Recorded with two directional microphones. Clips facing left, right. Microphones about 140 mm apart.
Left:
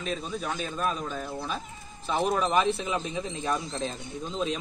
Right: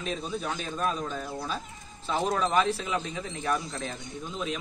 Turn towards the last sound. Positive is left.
turn(degrees=30)  # may be behind; listen again after turning